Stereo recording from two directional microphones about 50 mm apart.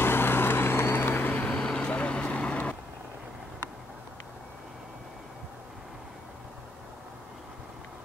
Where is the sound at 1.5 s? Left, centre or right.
Centre.